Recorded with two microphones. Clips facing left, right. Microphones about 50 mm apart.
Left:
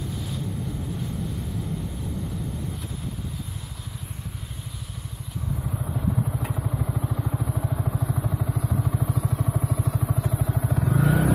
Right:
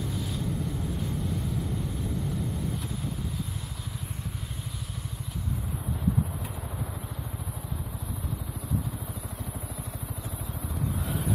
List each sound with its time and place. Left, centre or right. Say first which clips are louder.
7.3 s vehicle: left 9 dB; left
8.5 s vehicle: left 6 dB; left
9.4 s vehicle: left 11 dB; left